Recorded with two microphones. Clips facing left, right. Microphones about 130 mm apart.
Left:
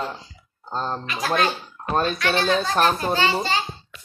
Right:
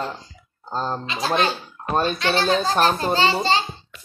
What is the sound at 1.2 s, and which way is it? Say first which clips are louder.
A child's voice: right 1 dB; 25° right (ahead or behind).